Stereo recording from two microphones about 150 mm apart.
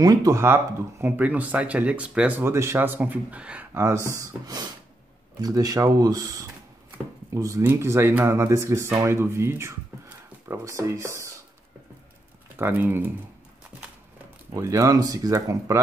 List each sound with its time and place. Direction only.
0.0 s speech: 25° right (ahead or behind)
12.5 s speech: 15° right (ahead or behind)
14.5 s speech: 20° right (ahead or behind)